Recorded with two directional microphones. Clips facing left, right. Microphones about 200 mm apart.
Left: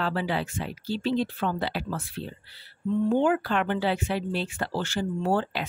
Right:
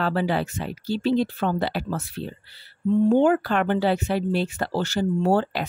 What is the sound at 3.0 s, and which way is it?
Speech, 45° right (ahead or behind).